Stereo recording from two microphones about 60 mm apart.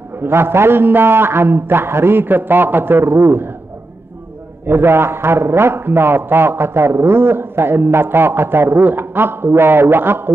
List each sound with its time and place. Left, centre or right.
0.2 s a man's voice: right
4.6 s a man's voice: right